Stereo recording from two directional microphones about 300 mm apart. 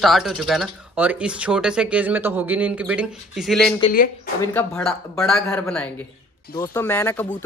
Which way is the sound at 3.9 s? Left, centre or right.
Left.